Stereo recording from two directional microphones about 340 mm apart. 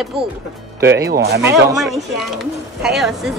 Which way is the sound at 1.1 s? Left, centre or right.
Right.